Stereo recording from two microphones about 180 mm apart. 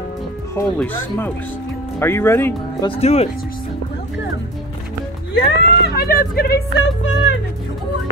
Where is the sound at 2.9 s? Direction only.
35° left (ahead or behind).